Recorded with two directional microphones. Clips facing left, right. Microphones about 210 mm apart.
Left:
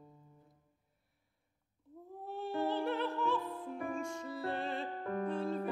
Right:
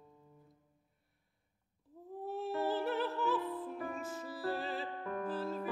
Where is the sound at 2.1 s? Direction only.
Centre (ahead or behind).